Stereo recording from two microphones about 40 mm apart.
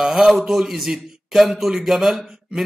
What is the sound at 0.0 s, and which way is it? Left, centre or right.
A man's voice, centre.